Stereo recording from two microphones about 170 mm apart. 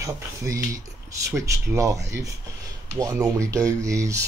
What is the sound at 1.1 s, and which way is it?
Speech, 20° right (ahead or behind).